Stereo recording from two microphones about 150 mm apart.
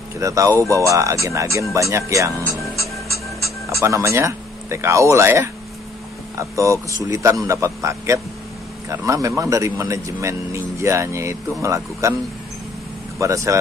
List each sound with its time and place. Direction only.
0.2 s speech: 20° right (ahead or behind)
3.8 s speech: 20° right (ahead or behind)
13.2 s speech: 20° right (ahead or behind)